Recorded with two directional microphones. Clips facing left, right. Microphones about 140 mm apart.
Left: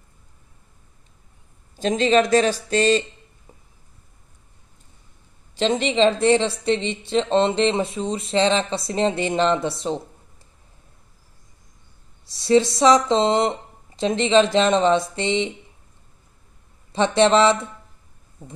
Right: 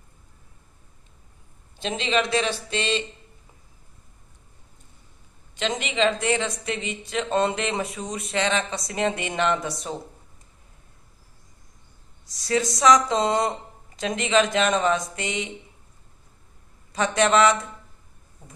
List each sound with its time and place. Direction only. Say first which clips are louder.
1.8 s speech: left 7 dB; 40° left (ahead or behind)
5.5 s speech: left 7 dB; 35° left (ahead or behind)
12.3 s speech: left 8 dB; 25° left (ahead or behind)
16.9 s speech: left 4 dB; 30° left (ahead or behind)